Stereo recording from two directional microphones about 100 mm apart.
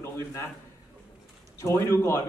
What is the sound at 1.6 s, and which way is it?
Speech, 30° left (ahead or behind).